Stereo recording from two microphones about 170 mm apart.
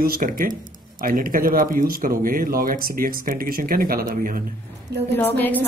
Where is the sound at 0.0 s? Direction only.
55° right (ahead or behind).